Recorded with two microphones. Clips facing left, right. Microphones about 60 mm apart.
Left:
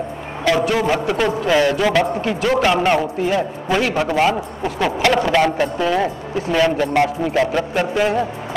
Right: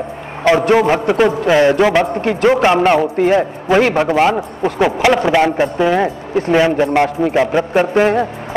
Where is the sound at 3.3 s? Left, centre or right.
Right.